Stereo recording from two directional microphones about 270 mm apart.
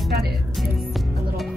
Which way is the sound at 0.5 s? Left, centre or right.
Centre.